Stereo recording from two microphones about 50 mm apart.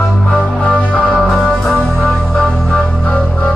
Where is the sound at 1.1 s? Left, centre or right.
Centre.